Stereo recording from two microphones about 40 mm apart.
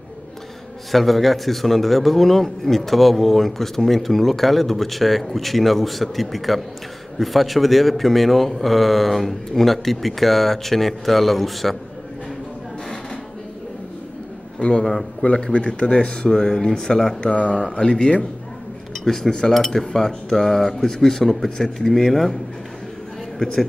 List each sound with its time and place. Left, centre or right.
0.9 s speech: centre
14.6 s speech: left
17.2 s speech: left
19.0 s speech: centre
23.4 s speech: centre